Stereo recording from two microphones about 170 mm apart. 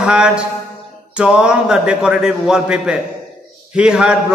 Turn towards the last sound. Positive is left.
turn(degrees=-5)  # may be behind; listen again after turning